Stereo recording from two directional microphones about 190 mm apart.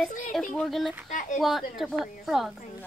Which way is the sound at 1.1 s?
40° left (ahead or behind).